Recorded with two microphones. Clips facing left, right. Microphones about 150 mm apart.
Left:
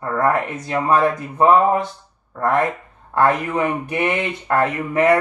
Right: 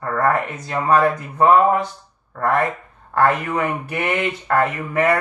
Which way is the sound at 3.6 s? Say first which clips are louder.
Left 2 dB; 15° left (ahead or behind).